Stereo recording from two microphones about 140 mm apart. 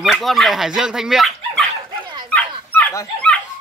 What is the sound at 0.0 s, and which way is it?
Speech, centre (ahead or behind).